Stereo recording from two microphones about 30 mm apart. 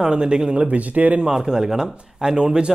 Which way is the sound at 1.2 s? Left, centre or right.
Right.